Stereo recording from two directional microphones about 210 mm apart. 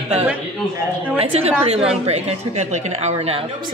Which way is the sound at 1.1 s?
30° right (ahead or behind).